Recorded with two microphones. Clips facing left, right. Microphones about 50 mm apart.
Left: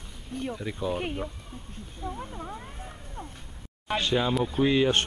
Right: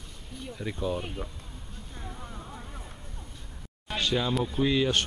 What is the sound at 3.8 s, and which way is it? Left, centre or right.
Speech, left.